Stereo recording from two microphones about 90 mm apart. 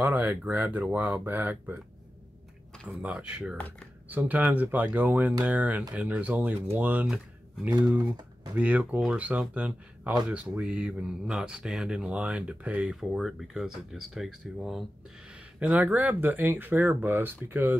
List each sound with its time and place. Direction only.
0.0 s speech: 15° right (ahead or behind)
2.9 s speech: 15° right (ahead or behind)
3.5 s speech: 15° left (ahead or behind)
4.1 s speech: 20° right (ahead or behind)
8.5 s speech: 15° right (ahead or behind)
12.9 s speech: centre (ahead or behind); by 17.7 s 20° right (ahead or behind)